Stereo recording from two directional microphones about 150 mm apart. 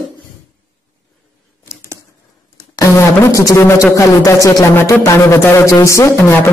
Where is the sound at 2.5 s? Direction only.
20° left (ahead or behind).